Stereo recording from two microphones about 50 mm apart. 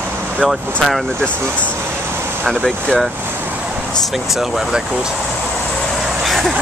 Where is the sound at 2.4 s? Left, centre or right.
Centre.